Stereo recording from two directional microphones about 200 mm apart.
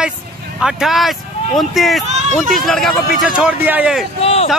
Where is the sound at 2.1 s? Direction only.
35° right (ahead or behind).